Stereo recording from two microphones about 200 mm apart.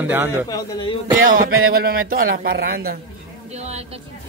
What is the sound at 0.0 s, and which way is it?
Speech, 10° right (ahead or behind).